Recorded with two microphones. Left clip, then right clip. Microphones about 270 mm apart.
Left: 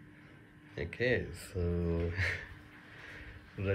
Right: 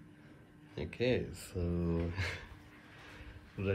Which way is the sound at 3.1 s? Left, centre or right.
Centre.